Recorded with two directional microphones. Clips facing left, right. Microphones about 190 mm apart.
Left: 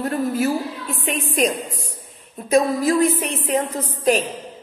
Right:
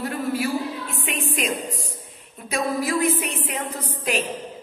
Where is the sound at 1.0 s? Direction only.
40° left (ahead or behind).